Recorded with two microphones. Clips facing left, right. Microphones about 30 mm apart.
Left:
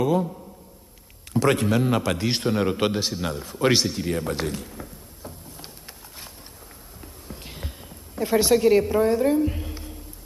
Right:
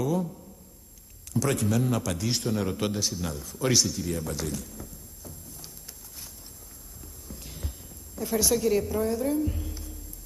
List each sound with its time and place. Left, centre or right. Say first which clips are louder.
0.0 s a man's voice: left 6 dB; left
7.0 s a sound: left 4 dB; left
8.2 s a woman's voice: left 7 dB; left